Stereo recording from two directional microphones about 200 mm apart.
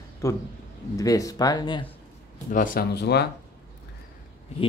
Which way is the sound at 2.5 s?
45° left (ahead or behind).